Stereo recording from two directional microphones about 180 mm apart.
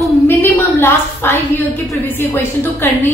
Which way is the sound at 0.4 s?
10° left (ahead or behind).